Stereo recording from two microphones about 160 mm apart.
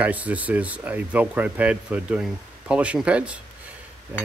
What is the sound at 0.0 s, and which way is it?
Speech, 10° right (ahead or behind).